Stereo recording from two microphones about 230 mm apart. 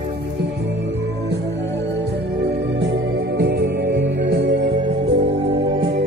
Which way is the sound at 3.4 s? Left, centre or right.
Right.